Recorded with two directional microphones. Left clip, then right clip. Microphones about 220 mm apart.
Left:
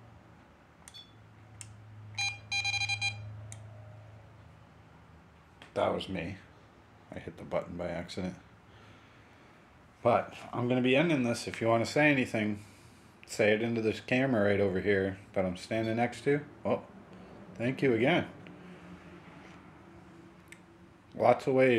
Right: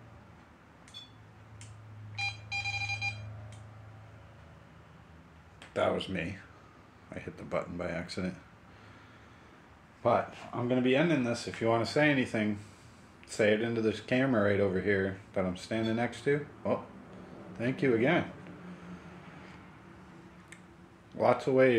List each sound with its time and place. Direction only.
2.1 s smoke detector: 60° left (ahead or behind)
5.7 s speech: 15° left (ahead or behind)
10.0 s speech: 30° left (ahead or behind)
21.1 s speech: 20° left (ahead or behind)